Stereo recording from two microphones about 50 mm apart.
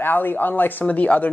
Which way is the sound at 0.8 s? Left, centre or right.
Left.